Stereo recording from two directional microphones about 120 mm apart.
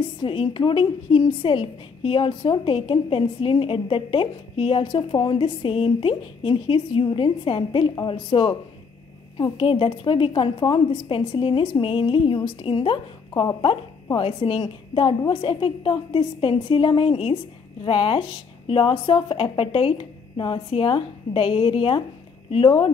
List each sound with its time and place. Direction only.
0.2 s a woman's voice: 45° left (ahead or behind)